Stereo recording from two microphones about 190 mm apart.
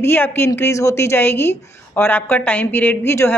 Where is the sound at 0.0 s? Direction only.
10° left (ahead or behind).